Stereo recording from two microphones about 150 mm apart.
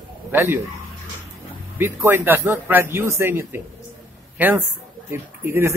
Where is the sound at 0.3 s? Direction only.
15° right (ahead or behind).